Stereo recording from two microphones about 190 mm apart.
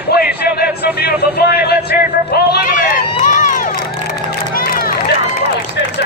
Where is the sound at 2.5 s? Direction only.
45° left (ahead or behind).